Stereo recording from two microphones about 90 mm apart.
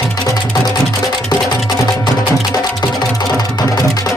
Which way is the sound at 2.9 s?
50° left (ahead or behind).